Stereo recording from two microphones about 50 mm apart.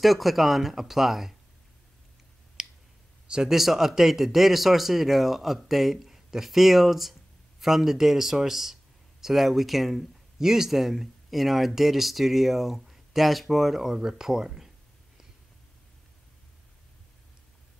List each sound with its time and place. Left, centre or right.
0.0 s speech: centre
2.6 s clicking: centre
3.3 s speech: centre
3.5 s speech: centre